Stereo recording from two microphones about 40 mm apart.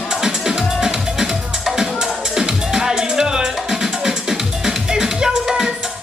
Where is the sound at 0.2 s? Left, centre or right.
Centre.